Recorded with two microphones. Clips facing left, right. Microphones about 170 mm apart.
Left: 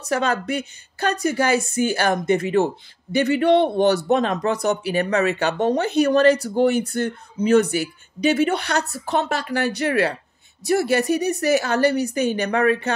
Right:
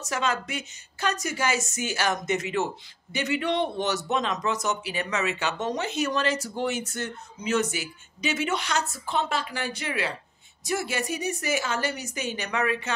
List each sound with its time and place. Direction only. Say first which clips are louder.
0.1 s a man's voice: left 7 dB; 60° left (ahead or behind)